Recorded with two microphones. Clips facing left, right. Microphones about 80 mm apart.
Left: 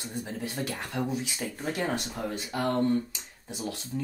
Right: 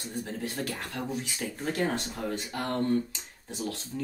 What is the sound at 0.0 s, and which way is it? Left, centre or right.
Speech, centre.